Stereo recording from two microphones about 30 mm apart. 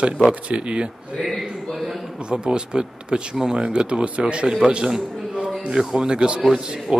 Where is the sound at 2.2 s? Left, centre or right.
Right.